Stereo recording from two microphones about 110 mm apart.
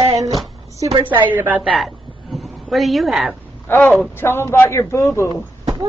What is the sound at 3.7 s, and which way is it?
Speech, 20° left (ahead or behind).